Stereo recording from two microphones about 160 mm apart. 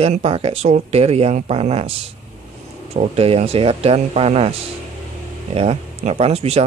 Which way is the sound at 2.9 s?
40° right (ahead or behind).